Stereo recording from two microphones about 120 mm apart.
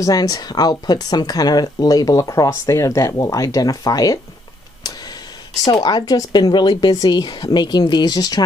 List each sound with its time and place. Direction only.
0.0 s speech: 30° left (ahead or behind)
5.7 s speech: 35° left (ahead or behind)